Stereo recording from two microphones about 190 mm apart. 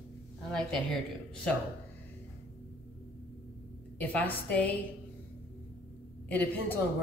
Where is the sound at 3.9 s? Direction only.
10° left (ahead or behind).